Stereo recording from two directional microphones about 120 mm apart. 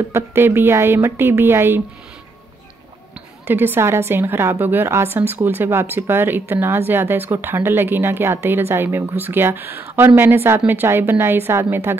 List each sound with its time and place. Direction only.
0.1 s a woman's voice: 20° right (ahead or behind)
3.4 s a woman's voice: 15° right (ahead or behind)